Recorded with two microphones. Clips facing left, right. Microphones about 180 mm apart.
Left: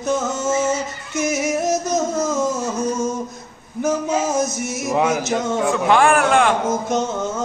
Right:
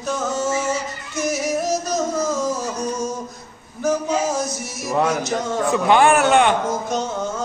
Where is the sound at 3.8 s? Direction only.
20° left (ahead or behind).